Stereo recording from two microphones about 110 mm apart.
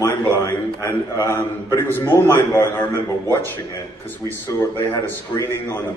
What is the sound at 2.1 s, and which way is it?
Speech, 20° left (ahead or behind).